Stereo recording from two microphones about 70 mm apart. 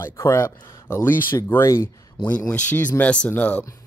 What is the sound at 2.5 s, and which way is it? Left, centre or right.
Speech, left.